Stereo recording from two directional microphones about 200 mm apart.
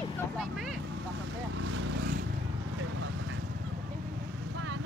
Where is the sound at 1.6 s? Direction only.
75° right (ahead or behind).